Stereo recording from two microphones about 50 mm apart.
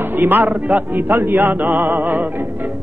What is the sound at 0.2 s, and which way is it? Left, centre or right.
Speech, right.